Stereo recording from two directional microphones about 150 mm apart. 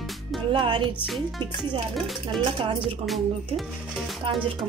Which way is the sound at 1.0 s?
Centre (ahead or behind).